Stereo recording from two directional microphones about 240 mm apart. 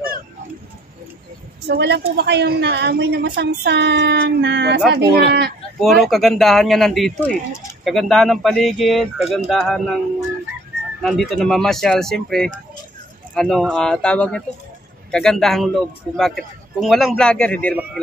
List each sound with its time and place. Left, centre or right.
1.7 s a woman's voice: right
5.8 s a man's voice: centre
11.0 s a man's voice: centre